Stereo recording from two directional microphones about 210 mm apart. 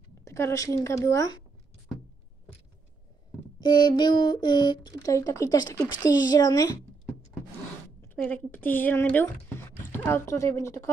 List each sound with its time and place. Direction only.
0.2 s speech: 15° left (ahead or behind)
3.6 s speech: 20° left (ahead or behind)
8.0 s speech: 10° left (ahead or behind)